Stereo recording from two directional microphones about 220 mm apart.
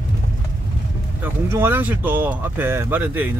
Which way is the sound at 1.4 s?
10° right (ahead or behind).